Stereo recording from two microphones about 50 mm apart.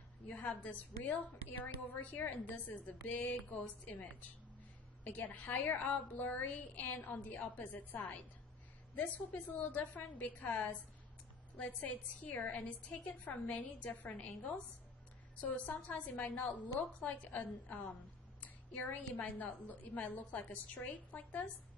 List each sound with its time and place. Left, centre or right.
0.3 s a woman's voice: left
18.4 s a sound: left
19.1 s a woman's voice: left